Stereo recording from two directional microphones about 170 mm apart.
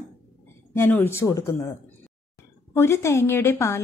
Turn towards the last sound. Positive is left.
turn(degrees=15)  # may be behind; listen again after turning